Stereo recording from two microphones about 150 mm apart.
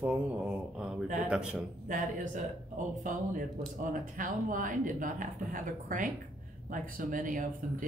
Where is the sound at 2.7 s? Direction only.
60° right (ahead or behind).